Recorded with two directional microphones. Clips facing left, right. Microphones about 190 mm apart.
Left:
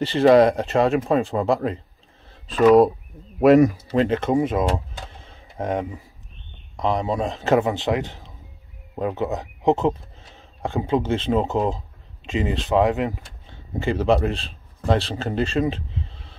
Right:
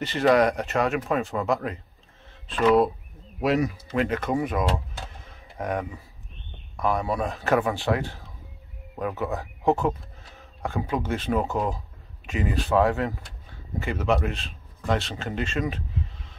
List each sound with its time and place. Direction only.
0.0 s speech: 30° left (ahead or behind)
3.3 s speech: 50° left (ahead or behind)
3.8 s speech: 30° left (ahead or behind)
5.2 s a sound: 25° left (ahead or behind)
6.8 s a man's voice: 20° left (ahead or behind)
13.7 s speech: 30° left (ahead or behind)